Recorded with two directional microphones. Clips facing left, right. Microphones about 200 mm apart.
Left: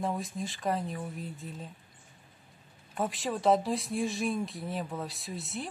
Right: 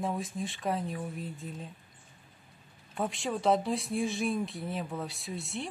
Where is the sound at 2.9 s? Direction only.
Centre (ahead or behind).